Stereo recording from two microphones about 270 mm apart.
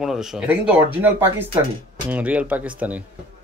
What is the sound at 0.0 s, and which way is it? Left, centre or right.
Speech, centre.